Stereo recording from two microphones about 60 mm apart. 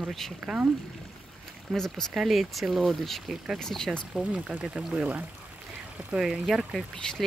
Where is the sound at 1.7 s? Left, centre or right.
Centre.